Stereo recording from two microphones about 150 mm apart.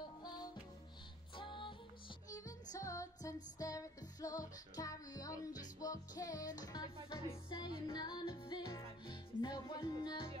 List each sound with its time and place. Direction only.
0.0 s music: 25° left (ahead or behind)